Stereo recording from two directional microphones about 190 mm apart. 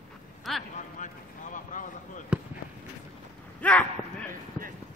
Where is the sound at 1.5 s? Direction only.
45° left (ahead or behind).